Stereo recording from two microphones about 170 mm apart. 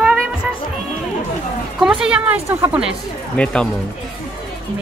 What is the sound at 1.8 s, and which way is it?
Speech, 5° right (ahead or behind).